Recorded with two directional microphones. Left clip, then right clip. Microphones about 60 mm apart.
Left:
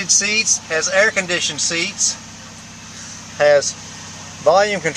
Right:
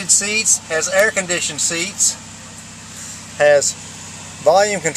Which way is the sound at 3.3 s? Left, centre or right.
Centre.